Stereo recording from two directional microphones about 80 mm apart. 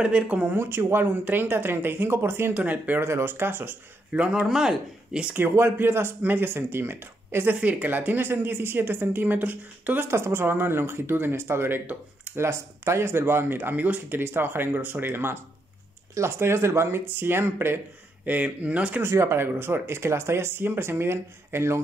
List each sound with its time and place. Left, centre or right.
0.0 s speech: centre
0.6 s speech: right
2.5 s speech: centre
3.0 s speech: right; by 5.3 s centre
5.3 s speech: right
11.8 s speech: centre
12.4 s speech: right; by 19.0 s centre
19.0 s speech: right